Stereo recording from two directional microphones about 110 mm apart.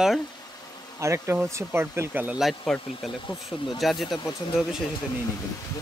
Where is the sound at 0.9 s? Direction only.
25° right (ahead or behind).